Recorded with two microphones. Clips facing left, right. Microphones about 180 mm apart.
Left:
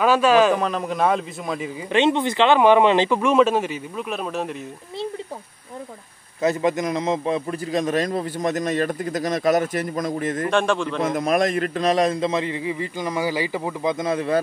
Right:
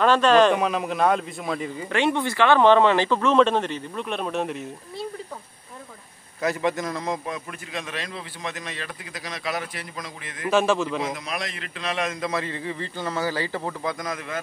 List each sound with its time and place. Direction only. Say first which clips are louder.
0.0 s speech: left 1 dB; 10° left (ahead or behind)
0.6 s a man's voice: left 1 dB; 5° right (ahead or behind)
1.9 s speech: left 5 dB; 20° left (ahead or behind); by 4.6 s centre (ahead or behind)
6.4 s a man's voice: left 4 dB; 20° left (ahead or behind); by 10.5 s 45° left (ahead or behind)
10.5 s a man's voice: right 3 dB; 5° right (ahead or behind)
11.0 s a man's voice: left 9 dB; 50° left (ahead or behind); by 13.9 s 10° left (ahead or behind)
13.9 s a man's voice: left 10 dB; 30° left (ahead or behind)